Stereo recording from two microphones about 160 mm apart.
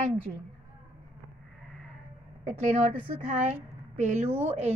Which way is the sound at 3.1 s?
40° right (ahead or behind).